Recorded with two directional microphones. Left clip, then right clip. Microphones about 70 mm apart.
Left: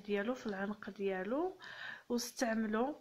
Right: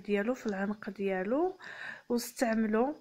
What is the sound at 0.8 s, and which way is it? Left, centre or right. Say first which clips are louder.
A woman's voice: right 6 dB; right.